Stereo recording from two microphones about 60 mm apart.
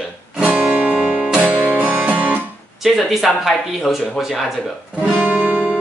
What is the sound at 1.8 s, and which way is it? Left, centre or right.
Music, right.